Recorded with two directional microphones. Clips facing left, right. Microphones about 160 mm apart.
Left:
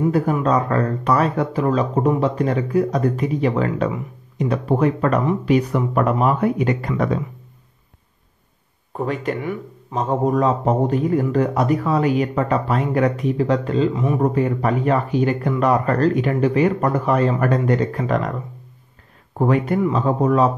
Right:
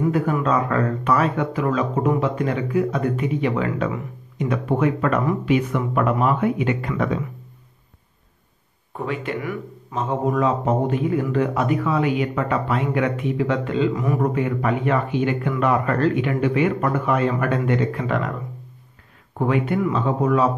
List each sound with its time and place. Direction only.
0.1 s speech: 35° left (ahead or behind)
8.9 s speech: 40° left (ahead or behind)
9.4 s speech: 25° left (ahead or behind)
10.0 s speech: 40° left (ahead or behind)
13.9 s speech: 25° left (ahead or behind)
14.3 s speech: 35° left (ahead or behind)
19.3 s speech: 40° left (ahead or behind)